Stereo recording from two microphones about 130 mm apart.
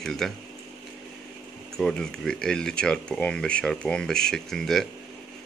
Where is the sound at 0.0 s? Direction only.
5° left (ahead or behind).